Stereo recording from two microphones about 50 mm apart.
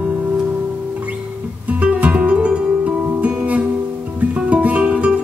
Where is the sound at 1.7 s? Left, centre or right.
Right.